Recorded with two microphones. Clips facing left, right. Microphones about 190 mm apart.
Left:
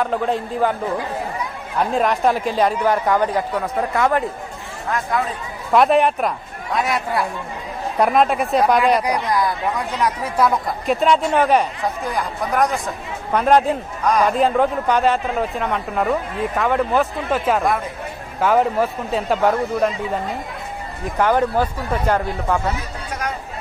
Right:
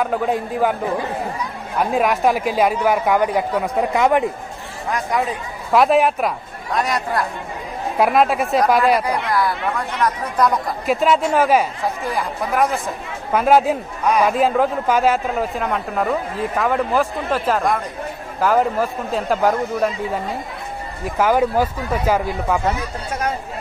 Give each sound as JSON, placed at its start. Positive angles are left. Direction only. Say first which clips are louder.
{"t": 0.0, "sound": "speech", "louder": "right 1 dB", "side_deg": -5}
{"t": 1.8, "sound": "speech", "louder": "right 1 dB", "side_deg": -5}
{"t": 5.7, "sound": "speech", "louder": "even", "side_deg": 0}
{"t": 9.3, "sound": "speech", "louder": "even", "side_deg": 15}
{"t": 21.2, "sound": "speech", "louder": "right 1 dB", "side_deg": -10}